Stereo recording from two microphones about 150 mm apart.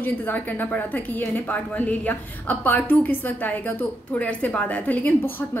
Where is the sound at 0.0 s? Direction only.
10° left (ahead or behind).